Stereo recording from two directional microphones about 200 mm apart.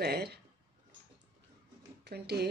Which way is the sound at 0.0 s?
55° right (ahead or behind).